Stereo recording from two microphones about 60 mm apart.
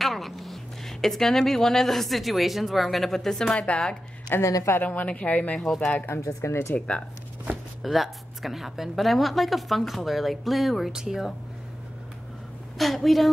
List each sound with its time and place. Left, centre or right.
0.0 s speech: centre
4.3 s speech: left
4.8 s speech: left
5.7 s speech: centre
5.9 s speech: left
6.2 s speech: left
7.8 s a woman's voice: centre
12.7 s a woman's voice: centre